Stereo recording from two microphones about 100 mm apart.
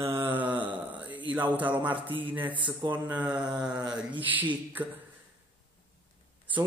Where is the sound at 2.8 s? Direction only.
45° right (ahead or behind).